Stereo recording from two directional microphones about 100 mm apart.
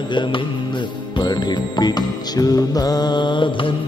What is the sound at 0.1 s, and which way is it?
Music, 50° left (ahead or behind).